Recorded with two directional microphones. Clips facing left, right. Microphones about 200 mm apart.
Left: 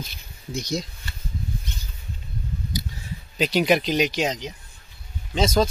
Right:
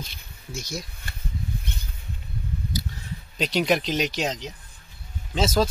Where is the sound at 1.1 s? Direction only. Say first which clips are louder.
Even; 55° right (ahead or behind).